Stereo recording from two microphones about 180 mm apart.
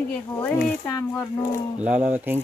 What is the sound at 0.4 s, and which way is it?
Speech, 5° left (ahead or behind).